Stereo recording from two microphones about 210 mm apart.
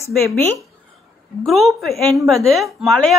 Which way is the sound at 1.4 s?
Centre (ahead or behind).